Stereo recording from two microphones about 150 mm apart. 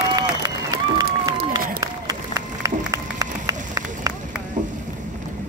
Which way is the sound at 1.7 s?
25° right (ahead or behind).